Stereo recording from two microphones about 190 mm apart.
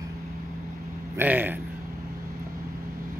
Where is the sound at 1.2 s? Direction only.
10° right (ahead or behind).